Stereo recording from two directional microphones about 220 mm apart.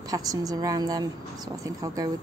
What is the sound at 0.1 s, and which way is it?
A woman's voice, 15° right (ahead or behind).